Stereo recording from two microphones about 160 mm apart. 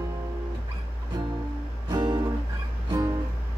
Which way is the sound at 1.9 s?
25° right (ahead or behind).